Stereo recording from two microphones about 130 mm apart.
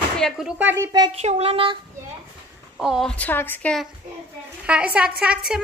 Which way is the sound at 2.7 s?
Centre (ahead or behind).